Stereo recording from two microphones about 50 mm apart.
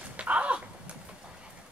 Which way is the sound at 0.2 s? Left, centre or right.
Right.